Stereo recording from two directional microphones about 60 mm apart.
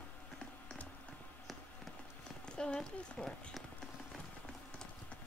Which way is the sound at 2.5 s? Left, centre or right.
Centre.